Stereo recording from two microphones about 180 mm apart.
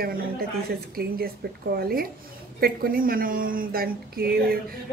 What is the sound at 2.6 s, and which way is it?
A child's voice, 55° right (ahead or behind).